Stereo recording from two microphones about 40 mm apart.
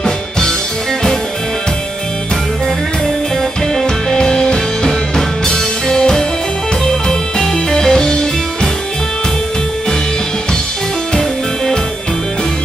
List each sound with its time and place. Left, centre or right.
3.8 s music: centre
11.1 s music: centre